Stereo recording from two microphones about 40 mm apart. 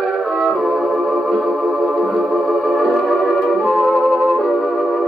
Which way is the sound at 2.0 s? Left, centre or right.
Centre.